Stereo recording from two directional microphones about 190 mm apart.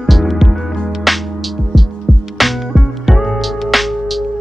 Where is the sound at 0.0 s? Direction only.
Centre (ahead or behind).